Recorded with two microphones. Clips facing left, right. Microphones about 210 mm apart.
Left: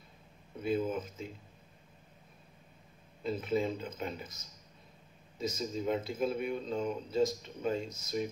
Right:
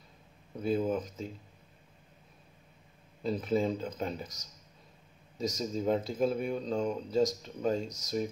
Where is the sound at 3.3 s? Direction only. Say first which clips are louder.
Right 3 dB; 35° right (ahead or behind).